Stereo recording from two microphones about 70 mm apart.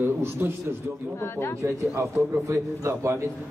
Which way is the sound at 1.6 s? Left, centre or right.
Right.